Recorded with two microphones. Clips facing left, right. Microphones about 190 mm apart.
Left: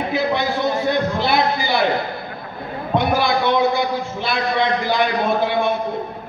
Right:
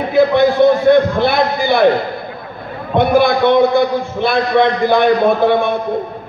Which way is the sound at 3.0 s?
55° right (ahead or behind).